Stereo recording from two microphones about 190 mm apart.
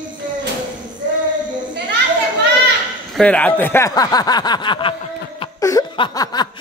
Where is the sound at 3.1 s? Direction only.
5° left (ahead or behind); by 4.9 s 25° left (ahead or behind).